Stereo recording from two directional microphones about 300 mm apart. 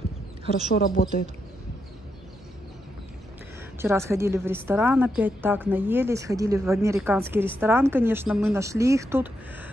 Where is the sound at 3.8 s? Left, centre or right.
Centre.